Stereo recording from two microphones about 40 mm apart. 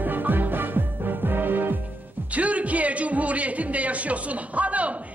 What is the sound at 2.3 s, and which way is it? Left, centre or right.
A man's voice, right.